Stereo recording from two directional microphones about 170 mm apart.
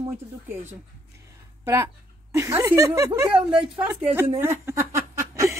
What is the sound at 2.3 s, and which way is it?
Speech, 15° right (ahead or behind).